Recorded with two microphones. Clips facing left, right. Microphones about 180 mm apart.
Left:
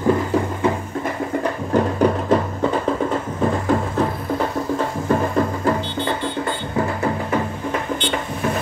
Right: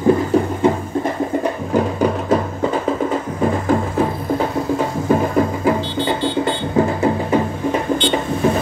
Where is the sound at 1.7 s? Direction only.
5° right (ahead or behind).